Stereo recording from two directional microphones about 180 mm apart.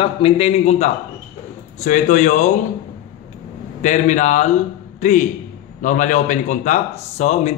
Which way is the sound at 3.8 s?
45° left (ahead or behind).